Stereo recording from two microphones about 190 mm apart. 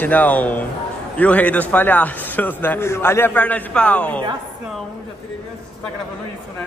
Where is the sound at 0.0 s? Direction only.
10° left (ahead or behind).